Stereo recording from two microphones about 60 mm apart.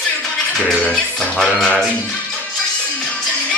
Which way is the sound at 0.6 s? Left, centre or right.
Centre.